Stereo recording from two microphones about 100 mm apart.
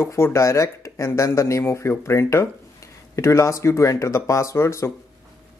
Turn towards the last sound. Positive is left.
turn(degrees=30)  # may be behind; listen again after turning